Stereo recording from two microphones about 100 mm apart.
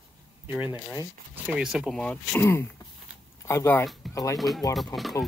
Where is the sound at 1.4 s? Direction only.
10° right (ahead or behind).